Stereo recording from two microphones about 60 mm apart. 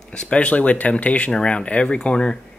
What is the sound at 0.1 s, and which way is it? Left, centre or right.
Speech, centre.